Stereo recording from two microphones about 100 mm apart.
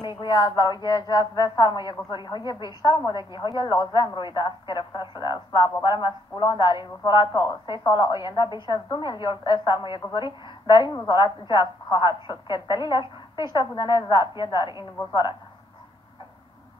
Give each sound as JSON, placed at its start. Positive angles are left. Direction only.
{"t": 0.0, "sound": "speech", "side_deg": 45}